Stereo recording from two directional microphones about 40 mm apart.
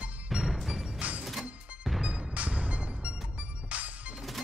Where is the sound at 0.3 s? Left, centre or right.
Centre.